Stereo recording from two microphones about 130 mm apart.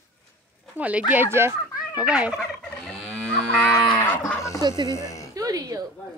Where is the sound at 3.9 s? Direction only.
15° left (ahead or behind).